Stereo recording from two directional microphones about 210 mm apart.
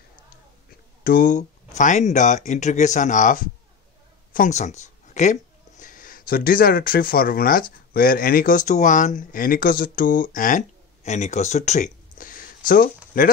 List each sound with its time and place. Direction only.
1.0 s speech: 40° left (ahead or behind)